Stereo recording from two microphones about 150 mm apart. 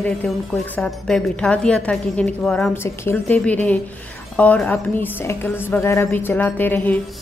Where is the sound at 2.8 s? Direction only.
15° left (ahead or behind).